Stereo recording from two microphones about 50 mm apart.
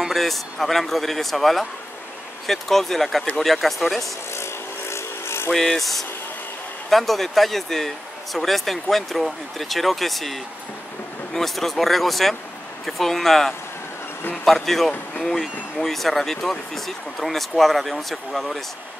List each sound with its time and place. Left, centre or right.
0.1 s speech: centre
4.3 s vehicle: left
5.5 s speech: centre